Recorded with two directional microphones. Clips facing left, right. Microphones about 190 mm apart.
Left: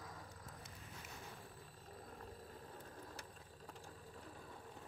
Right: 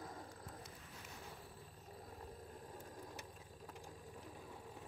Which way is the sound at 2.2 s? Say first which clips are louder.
Right 1 dB; 10° right (ahead or behind).